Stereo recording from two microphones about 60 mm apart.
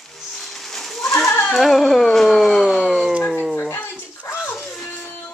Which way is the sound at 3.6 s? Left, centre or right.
Left.